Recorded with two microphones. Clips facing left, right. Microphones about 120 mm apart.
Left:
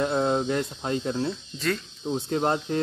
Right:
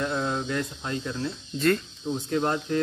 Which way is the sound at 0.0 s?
30° left (ahead or behind).